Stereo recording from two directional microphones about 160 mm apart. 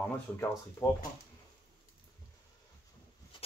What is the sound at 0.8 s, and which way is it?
Speech, 20° left (ahead or behind).